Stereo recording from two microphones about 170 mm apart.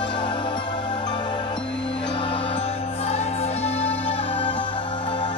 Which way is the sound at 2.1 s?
35° left (ahead or behind).